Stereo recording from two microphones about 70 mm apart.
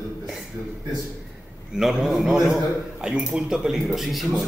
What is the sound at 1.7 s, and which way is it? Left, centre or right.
A man's voice, centre.